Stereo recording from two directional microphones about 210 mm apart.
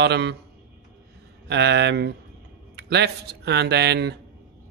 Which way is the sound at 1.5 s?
55° right (ahead or behind).